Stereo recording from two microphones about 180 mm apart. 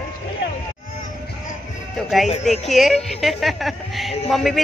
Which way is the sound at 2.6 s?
Centre (ahead or behind).